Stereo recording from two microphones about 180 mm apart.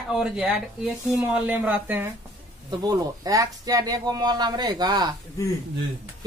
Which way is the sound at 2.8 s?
20° right (ahead or behind).